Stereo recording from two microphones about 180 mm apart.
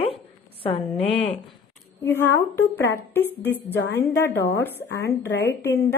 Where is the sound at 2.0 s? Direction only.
10° left (ahead or behind).